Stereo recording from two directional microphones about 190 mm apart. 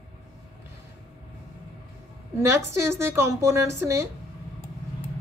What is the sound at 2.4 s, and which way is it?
A woman's voice, 15° right (ahead or behind).